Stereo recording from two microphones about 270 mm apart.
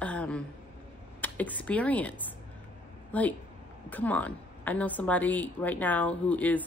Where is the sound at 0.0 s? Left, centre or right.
Centre.